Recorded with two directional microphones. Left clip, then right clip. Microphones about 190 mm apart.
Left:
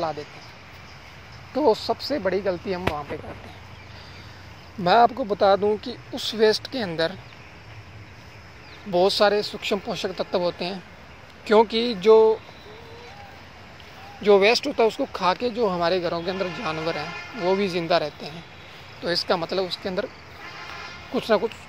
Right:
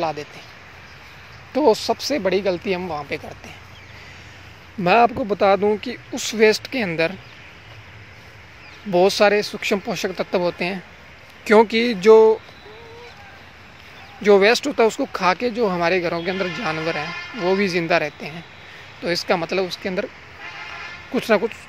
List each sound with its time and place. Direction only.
1.5 s speech: 60° right (ahead or behind)
4.8 s speech: 50° right (ahead or behind)
8.9 s speech: 55° right (ahead or behind)
14.2 s speech: 45° right (ahead or behind)
20.4 s sheep: 60° left (ahead or behind)
21.1 s speech: 50° right (ahead or behind)